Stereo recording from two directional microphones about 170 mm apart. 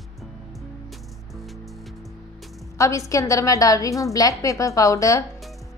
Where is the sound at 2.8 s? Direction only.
20° left (ahead or behind).